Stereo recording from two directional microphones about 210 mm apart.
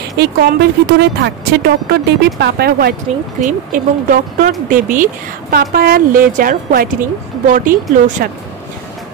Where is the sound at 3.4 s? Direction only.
40° right (ahead or behind).